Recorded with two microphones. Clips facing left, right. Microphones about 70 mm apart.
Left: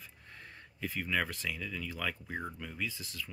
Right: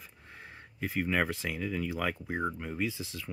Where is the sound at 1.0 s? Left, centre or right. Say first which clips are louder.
Right 4 dB; right.